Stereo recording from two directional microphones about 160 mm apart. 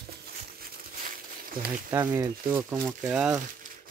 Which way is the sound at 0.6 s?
65° right (ahead or behind).